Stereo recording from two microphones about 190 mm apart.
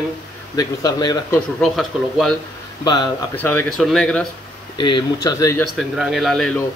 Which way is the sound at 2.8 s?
20° left (ahead or behind).